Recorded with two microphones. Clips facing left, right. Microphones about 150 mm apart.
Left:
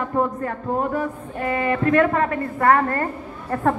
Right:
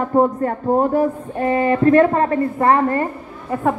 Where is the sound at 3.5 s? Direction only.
10° right (ahead or behind).